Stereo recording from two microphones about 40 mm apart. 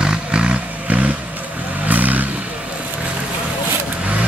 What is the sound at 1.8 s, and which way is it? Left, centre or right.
Vehicle, right.